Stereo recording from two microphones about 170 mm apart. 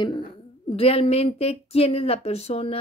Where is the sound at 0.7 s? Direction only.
35° left (ahead or behind).